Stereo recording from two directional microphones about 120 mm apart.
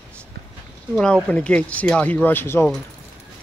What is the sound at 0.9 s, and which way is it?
Speech, 10° left (ahead or behind).